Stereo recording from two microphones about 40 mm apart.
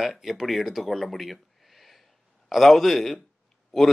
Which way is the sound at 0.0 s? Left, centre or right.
Centre.